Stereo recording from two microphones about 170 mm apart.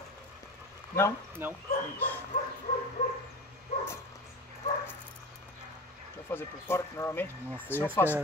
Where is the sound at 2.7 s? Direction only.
35° left (ahead or behind).